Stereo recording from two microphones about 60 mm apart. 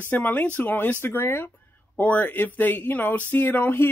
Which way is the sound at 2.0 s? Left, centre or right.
Left.